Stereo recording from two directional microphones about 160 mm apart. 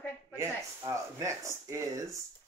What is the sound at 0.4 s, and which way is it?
Speech, 15° right (ahead or behind).